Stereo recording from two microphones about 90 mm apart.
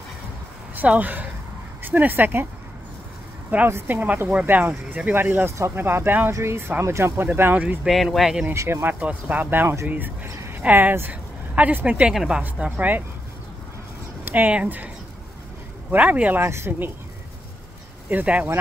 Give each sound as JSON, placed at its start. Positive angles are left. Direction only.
{"t": 0.7, "sound": "speech", "side_deg": -20}
{"t": 3.4, "sound": "speech", "side_deg": -20}
{"t": 7.2, "sound": "a woman's voice", "side_deg": -20}
{"t": 7.9, "sound": "speech", "side_deg": 0}
{"t": 8.5, "sound": "speech", "side_deg": -35}
{"t": 8.8, "sound": "speech", "side_deg": -20}
{"t": 9.8, "sound": "a sound", "side_deg": -20}
{"t": 10.6, "sound": "a woman's voice", "side_deg": -20}
{"t": 14.2, "sound": "speech", "side_deg": -20}
{"t": 15.9, "sound": "speech", "side_deg": -15}
{"t": 18.1, "sound": "a woman's voice", "side_deg": -15}